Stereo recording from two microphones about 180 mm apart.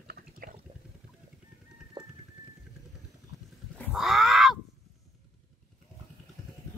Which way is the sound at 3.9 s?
Centre (ahead or behind).